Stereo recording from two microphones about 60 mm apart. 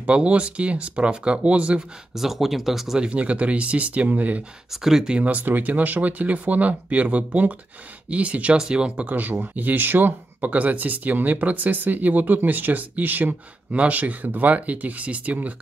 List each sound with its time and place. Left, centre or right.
0.0 s speech: right
2.1 s speech: centre
3.1 s speech: right
4.8 s speech: centre
5.2 s speech: right